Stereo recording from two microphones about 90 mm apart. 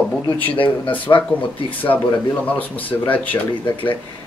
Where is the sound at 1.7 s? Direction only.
20° left (ahead or behind).